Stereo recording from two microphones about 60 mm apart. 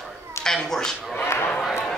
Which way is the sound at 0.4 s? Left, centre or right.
Centre.